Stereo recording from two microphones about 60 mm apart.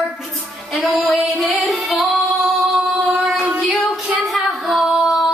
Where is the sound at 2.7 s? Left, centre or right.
Right.